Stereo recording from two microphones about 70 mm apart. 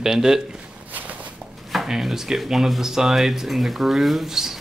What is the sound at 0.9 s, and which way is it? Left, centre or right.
Walk, right.